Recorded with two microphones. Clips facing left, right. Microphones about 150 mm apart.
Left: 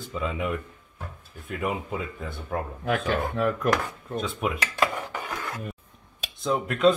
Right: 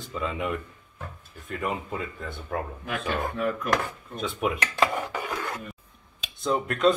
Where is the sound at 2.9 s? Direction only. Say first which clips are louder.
Left 5 dB; 55° left (ahead or behind).